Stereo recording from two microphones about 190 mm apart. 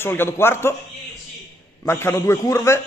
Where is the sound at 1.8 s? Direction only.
15° left (ahead or behind).